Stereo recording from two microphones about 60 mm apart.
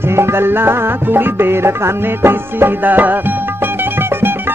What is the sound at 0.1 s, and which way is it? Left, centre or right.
Music, right.